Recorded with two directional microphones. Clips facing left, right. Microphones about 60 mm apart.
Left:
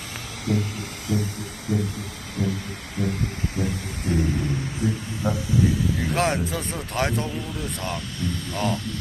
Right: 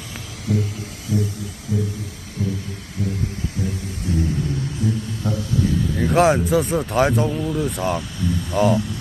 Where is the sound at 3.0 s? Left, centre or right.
Left.